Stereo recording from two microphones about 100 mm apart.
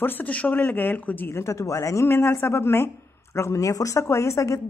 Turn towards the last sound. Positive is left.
turn(degrees=30)  # may be behind; listen again after turning